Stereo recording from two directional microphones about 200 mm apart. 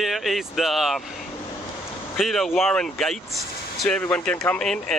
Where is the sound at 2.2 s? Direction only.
Centre (ahead or behind).